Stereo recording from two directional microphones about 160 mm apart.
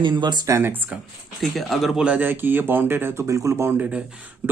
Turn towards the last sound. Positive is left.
turn(degrees=-10)  # may be behind; listen again after turning